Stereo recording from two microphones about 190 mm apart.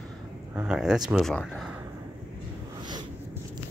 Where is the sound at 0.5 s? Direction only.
5° right (ahead or behind).